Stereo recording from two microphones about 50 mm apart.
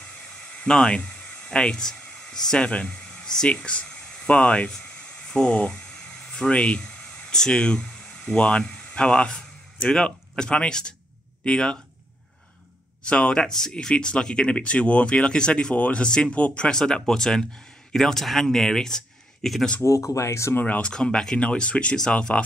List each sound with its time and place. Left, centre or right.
0.0 s a sound: centre
2.6 s speech: left
2.9 s a sound: centre
4.3 s speech: left
4.6 s a sound: centre
6.5 s speech: left
13.0 s speech: centre
15.7 s speech: left
16.0 s speech: centre
16.7 s speech: centre
19.8 s speech: left
20.8 s speech: centre